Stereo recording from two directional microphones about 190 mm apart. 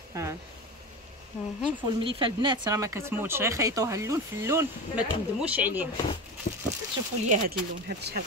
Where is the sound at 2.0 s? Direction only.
25° right (ahead or behind); by 5.9 s 10° right (ahead or behind).